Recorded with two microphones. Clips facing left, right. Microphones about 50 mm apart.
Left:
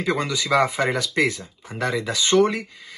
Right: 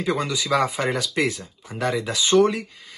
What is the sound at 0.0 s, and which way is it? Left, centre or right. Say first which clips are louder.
Speech: left 1 dB; left.